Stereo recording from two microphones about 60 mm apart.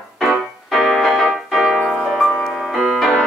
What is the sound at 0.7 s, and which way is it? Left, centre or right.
Music, centre.